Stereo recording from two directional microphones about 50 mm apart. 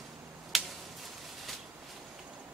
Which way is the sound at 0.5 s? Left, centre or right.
Centre.